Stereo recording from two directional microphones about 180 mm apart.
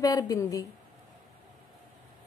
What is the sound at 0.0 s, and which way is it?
Speech, 20° left (ahead or behind).